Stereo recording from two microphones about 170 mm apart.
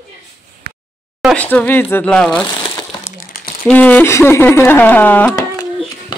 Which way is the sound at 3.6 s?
10° left (ahead or behind).